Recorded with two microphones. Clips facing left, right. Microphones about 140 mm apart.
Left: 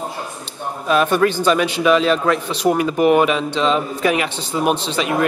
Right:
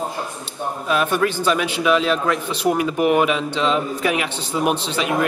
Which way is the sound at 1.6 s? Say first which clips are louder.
Left 3 dB; 5° right (ahead or behind).